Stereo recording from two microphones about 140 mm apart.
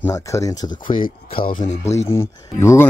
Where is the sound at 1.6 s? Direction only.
55° left (ahead or behind).